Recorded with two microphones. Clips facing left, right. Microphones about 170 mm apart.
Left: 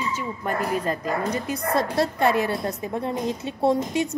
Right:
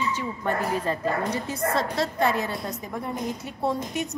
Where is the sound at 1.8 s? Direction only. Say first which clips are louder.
Left 3 dB; 55° left (ahead or behind).